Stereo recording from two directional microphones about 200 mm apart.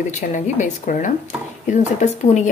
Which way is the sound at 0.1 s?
40° left (ahead or behind).